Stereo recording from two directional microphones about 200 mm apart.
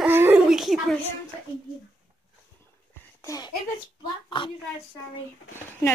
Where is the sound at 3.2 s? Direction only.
20° left (ahead or behind).